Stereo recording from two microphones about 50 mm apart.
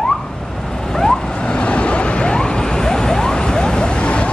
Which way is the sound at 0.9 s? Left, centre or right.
Centre.